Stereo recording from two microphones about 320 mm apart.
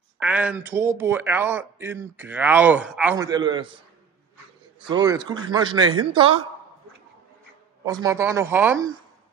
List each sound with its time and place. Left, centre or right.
0.2 s a man's voice: centre
4.8 s a man's voice: centre
7.8 s a man's voice: centre